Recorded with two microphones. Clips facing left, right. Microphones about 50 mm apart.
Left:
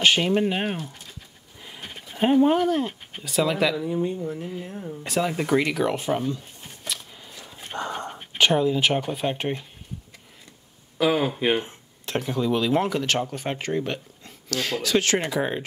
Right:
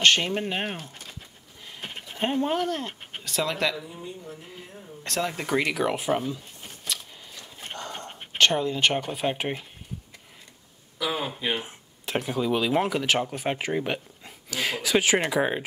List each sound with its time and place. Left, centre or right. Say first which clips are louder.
0.0 s speech: left 2 dB; centre
2.1 s speech: left 7 dB; centre
3.8 s speech: left 14 dB; left
5.0 s speech: left 4 dB; centre
6.9 s a sound: even; centre
7.7 s whispering: left 7 dB; left
8.4 s speech: left 2 dB; centre
11.0 s speech: left 7 dB; left
11.3 s speech: left 6 dB; left
11.6 s speech: even; centre